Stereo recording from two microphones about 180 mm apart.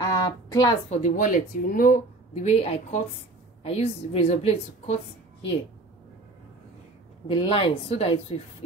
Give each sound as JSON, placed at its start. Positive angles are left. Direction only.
{"t": 0.0, "sound": "a sound", "side_deg": 20}
{"t": 0.8, "sound": "speech", "side_deg": 45}
{"t": 2.4, "sound": "a woman's voice", "side_deg": 35}
{"t": 7.2, "sound": "a woman's voice", "side_deg": 30}